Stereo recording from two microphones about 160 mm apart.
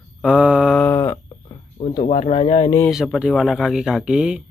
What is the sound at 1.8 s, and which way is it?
Speech, 40° left (ahead or behind).